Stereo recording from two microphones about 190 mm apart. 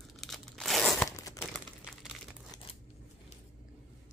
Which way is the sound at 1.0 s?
20° left (ahead or behind).